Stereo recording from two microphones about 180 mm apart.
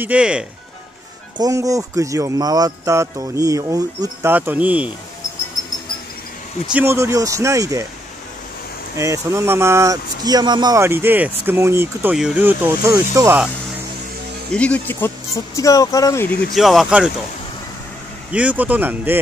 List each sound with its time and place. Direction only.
0.0 s speech: 5° right (ahead or behind)
1.4 s speech: 20° right (ahead or behind)
6.7 s speech: 10° right (ahead or behind)
8.9 s speech: 15° right (ahead or behind)
14.5 s speech: 5° left (ahead or behind)
16.5 s speech: centre (ahead or behind)
18.3 s speech: 10° right (ahead or behind)